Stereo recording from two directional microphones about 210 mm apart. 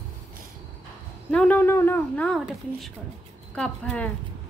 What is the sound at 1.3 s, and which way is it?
Speech, 5° left (ahead or behind).